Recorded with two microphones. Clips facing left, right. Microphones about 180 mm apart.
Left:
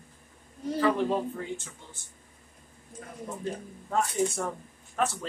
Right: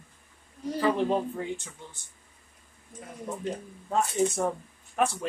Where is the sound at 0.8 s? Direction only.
15° right (ahead or behind).